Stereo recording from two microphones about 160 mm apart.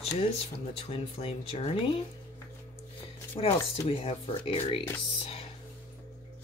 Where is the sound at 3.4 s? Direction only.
35° left (ahead or behind).